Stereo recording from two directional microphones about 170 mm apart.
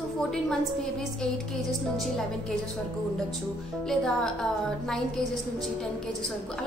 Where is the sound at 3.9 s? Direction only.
5° left (ahead or behind).